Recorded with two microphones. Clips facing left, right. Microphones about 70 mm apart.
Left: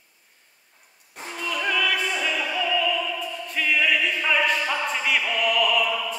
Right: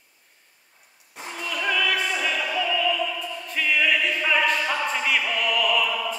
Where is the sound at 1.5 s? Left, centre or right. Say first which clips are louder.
Even; centre.